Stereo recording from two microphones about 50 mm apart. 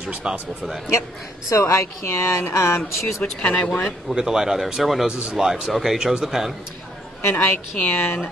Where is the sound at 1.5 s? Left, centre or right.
Left.